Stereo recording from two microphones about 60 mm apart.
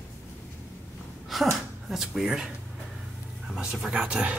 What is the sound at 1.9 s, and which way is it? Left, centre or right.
Speech, centre.